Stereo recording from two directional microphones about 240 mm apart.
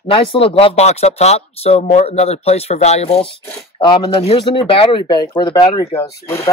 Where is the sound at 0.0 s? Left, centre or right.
Left.